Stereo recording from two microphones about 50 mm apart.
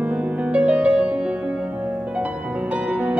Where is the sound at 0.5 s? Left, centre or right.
Right.